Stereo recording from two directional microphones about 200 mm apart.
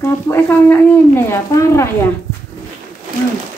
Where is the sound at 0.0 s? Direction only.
10° left (ahead or behind).